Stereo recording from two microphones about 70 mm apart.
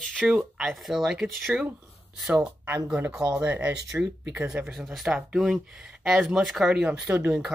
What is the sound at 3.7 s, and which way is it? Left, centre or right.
Speech, centre.